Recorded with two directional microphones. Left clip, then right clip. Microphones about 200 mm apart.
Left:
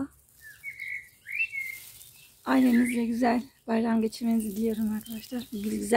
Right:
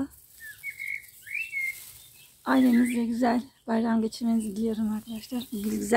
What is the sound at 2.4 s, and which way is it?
Speech, 5° right (ahead or behind).